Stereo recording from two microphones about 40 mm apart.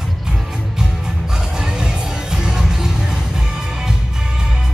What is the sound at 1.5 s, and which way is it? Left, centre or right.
Music, centre.